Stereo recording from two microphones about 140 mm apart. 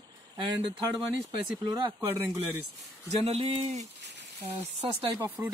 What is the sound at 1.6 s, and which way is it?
Speech, 30° right (ahead or behind).